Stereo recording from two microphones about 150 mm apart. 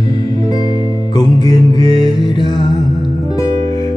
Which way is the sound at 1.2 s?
30° left (ahead or behind).